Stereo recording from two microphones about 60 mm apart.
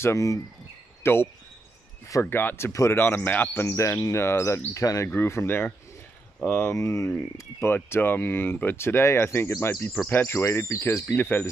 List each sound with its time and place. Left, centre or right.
0.0 s speech: left
1.0 s speech: left
3.7 s speech: left
5.1 s speech: left
6.7 s speech: left
7.7 s speech: left
9.5 s speech: left
10.0 s speech: left
11.1 s speech: left